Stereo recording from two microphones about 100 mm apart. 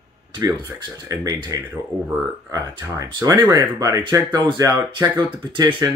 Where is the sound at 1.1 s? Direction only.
35° right (ahead or behind).